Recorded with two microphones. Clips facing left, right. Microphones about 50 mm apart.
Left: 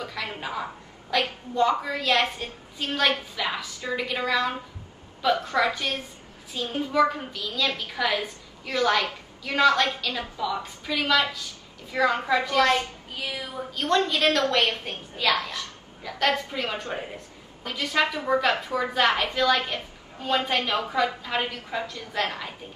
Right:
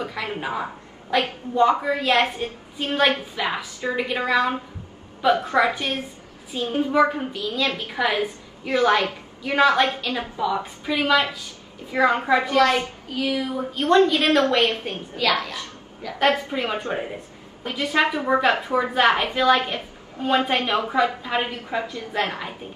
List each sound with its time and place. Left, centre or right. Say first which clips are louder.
0.0 s a woman's voice: right 4 dB; right
16.2 s a woman's voice: right 4 dB; right